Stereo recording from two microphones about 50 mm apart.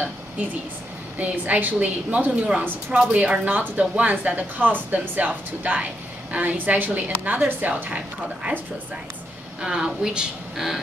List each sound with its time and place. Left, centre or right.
1.1 s speech: right
9.6 s a woman's voice: centre